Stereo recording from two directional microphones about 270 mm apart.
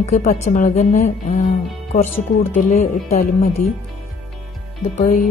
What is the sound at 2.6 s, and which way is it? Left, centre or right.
Speech, left.